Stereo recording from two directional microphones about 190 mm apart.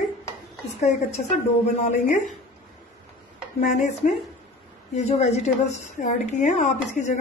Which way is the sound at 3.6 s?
40° left (ahead or behind).